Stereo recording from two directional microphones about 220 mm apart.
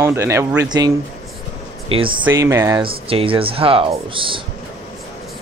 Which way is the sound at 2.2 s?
15° right (ahead or behind).